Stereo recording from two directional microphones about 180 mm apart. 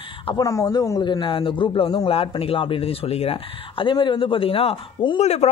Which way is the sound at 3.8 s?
25° left (ahead or behind).